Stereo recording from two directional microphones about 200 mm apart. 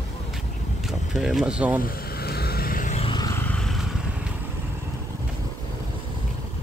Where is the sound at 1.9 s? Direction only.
50° left (ahead or behind).